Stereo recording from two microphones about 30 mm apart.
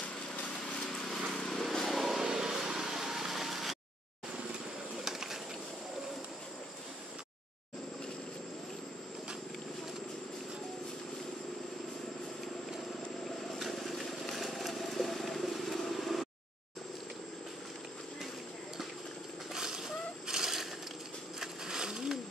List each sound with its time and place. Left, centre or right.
1.3 s vehicle: centre
2.0 s vehicle: centre
2.2 s vehicle: right; by 3.7 s centre
4.9 s bird: centre
13.6 s vehicle: centre
19.5 s a sound: centre